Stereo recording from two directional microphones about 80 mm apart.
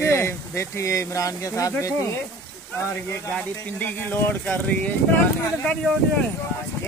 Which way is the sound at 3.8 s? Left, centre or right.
Left.